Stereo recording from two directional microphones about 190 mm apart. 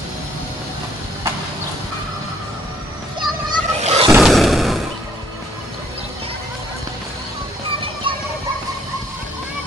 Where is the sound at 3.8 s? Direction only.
35° right (ahead or behind).